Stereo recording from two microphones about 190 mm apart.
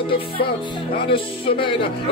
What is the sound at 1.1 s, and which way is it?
Speech, 25° left (ahead or behind).